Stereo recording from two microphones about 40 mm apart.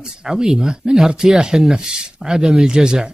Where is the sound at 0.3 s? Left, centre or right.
Centre.